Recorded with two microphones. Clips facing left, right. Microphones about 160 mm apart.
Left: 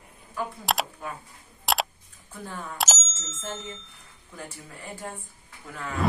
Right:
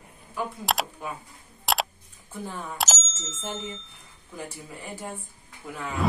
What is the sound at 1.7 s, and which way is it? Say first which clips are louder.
Single-lens reflex camera: even; centre (ahead or behind).